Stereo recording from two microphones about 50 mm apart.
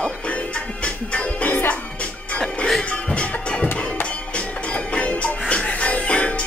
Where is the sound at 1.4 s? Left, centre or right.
Left.